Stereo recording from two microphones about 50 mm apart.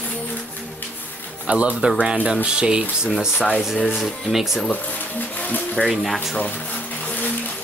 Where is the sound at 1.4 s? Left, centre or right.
Right.